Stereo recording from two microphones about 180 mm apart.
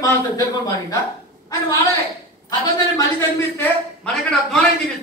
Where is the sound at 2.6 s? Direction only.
15° left (ahead or behind).